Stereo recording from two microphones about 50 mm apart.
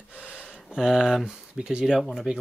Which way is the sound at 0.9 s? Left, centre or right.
Centre.